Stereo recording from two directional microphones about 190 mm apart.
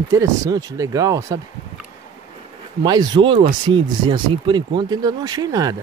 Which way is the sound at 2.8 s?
20° right (ahead or behind).